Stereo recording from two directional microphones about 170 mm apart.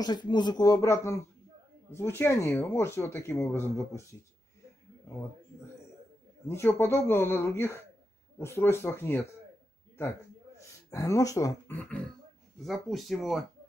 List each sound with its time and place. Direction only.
0.0 s speech: 25° left (ahead or behind)
6.4 s speech: 15° left (ahead or behind)
10.9 s speech: 20° left (ahead or behind)
12.6 s speech: centre (ahead or behind)